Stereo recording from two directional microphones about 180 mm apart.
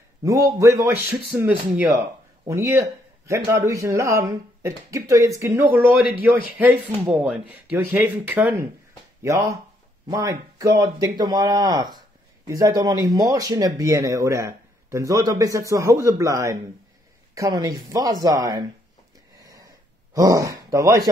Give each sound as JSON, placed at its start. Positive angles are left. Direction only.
{"t": 0.2, "sound": "a man's voice", "side_deg": -20}
{"t": 19.4, "sound": "a sound", "side_deg": -20}
{"t": 20.2, "sound": "speech", "side_deg": -20}